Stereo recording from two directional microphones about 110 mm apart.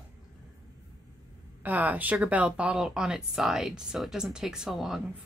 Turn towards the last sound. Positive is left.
turn(degrees=0)  # may be behind; listen again after turning